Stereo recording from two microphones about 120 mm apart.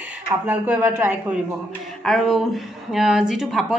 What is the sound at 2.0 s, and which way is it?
A woman's voice, centre (ahead or behind).